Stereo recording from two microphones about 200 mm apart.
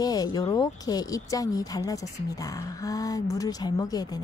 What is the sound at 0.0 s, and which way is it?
A woman's voice, 20° left (ahead or behind).